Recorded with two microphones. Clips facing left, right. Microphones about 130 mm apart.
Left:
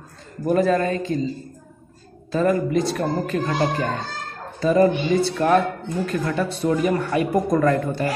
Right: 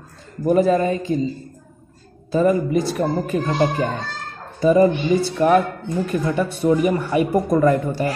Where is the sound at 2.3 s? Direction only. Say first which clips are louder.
Right 2 dB; 15° right (ahead or behind).